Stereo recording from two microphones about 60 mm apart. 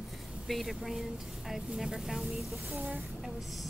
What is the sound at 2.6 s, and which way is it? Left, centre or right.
Speech, right.